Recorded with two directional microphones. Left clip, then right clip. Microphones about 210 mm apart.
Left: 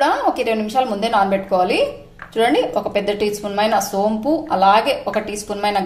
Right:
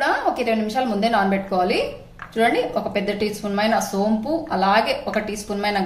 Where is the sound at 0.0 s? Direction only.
35° left (ahead or behind).